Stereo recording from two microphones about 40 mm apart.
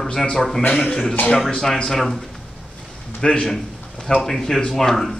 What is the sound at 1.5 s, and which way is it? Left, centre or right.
Speech, centre.